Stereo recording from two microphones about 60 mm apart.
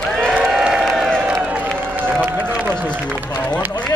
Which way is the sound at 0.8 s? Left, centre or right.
Centre.